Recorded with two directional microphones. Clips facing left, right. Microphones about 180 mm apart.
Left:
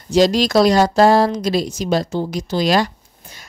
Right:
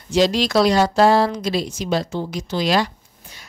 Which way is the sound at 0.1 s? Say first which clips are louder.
Left 3 dB; 40° left (ahead or behind).